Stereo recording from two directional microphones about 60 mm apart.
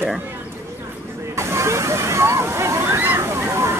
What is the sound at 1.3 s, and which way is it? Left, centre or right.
Slosh, right.